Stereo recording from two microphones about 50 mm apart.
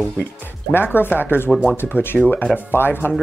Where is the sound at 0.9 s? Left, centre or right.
Left.